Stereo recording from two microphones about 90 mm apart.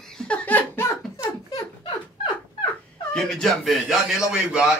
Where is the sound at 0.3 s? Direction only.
20° left (ahead or behind).